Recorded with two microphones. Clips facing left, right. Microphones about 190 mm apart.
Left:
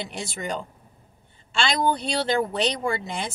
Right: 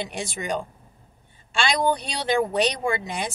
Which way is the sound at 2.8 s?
15° right (ahead or behind).